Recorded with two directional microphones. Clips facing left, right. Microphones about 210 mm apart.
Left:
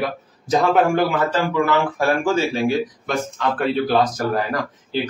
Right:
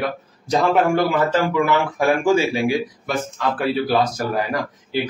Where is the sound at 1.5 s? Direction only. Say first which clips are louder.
Even; 15° right (ahead or behind).